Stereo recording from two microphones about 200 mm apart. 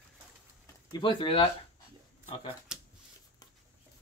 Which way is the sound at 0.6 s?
20° left (ahead or behind).